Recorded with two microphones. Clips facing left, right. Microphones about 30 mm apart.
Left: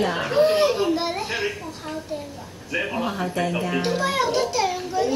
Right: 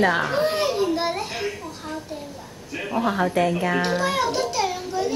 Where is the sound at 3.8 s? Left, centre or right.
Centre.